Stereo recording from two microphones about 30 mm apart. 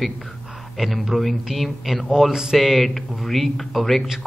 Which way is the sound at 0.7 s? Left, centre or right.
Centre.